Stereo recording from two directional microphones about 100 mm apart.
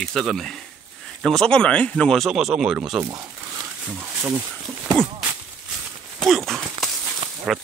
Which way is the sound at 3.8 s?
10° right (ahead or behind).